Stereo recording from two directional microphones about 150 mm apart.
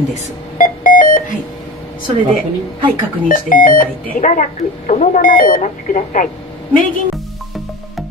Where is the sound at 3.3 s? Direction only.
65° left (ahead or behind).